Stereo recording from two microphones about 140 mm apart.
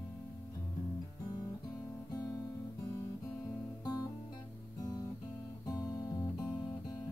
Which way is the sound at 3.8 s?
30° left (ahead or behind).